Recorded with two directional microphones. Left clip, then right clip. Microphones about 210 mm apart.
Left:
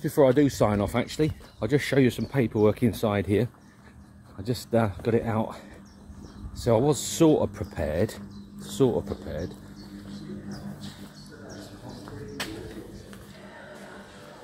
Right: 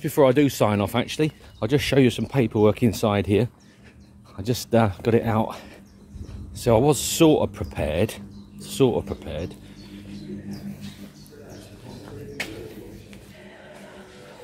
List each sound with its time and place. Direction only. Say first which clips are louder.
0.0 s speech: right 2 dB; 10° right (ahead or behind)
6.6 s speech: right 4 dB; 20° right (ahead or behind)